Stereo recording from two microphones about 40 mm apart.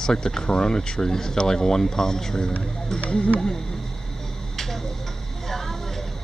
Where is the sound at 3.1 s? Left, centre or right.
Left.